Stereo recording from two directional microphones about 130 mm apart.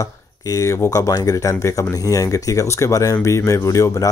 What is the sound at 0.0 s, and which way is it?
Speech, 25° left (ahead or behind).